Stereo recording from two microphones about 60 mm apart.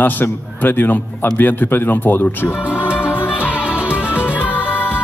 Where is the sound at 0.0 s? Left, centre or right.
Left.